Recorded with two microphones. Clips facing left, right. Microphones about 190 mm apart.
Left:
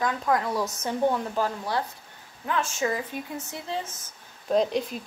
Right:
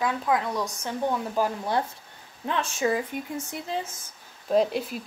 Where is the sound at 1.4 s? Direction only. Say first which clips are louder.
Right 2 dB; 15° right (ahead or behind).